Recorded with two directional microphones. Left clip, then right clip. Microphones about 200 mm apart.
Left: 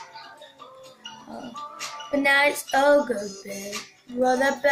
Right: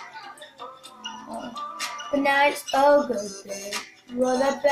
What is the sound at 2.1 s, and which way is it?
Child singing, centre (ahead or behind).